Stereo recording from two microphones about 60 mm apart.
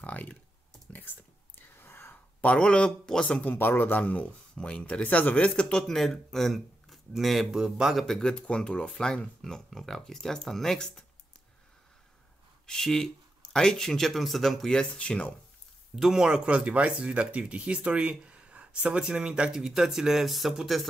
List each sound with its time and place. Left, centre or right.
0.0 s clicking: left
0.9 s whispering: left
1.8 s whispering: left
2.4 s speech: centre
3.5 s a man's voice: left; by 7.6 s centre
7.6 s speech: centre
7.9 s speech: centre
12.6 s speech: centre
14.7 s speech: centre
16.0 s speech: centre